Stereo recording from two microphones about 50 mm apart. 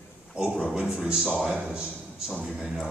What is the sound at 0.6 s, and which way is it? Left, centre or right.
A man's voice, centre.